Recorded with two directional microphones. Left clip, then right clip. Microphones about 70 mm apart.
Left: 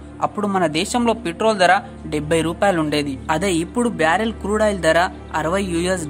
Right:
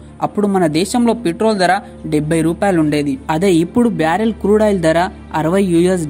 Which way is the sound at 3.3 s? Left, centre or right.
Right.